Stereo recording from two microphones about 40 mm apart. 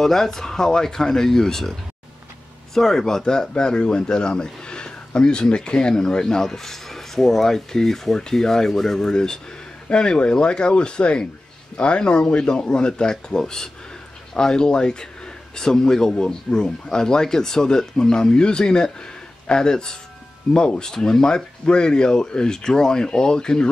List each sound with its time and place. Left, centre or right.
0.0 s speech: centre